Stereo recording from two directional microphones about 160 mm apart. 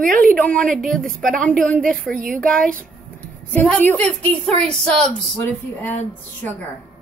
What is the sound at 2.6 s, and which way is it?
Speech, 60° right (ahead or behind).